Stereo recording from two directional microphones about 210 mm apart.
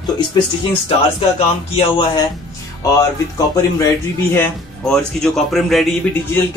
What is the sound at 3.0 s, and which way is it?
A man's voice, 15° left (ahead or behind).